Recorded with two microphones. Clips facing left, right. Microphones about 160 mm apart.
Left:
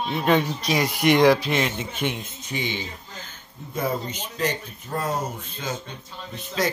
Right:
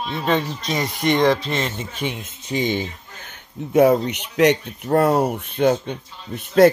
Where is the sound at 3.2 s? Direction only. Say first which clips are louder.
Right 9 dB; 70° right (ahead or behind).